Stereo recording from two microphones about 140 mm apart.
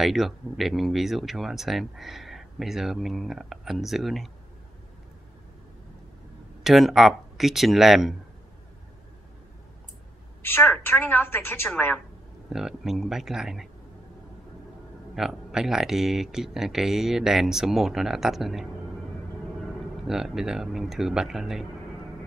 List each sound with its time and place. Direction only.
0.0 s speech: centre (ahead or behind)
6.6 s speech: centre (ahead or behind)
10.4 s a woman's voice: 15° left (ahead or behind)
12.4 s speech: centre (ahead or behind)
15.1 s speech: centre (ahead or behind)